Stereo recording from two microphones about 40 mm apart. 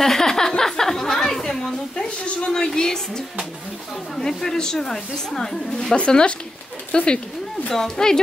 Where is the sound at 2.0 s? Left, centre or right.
Left.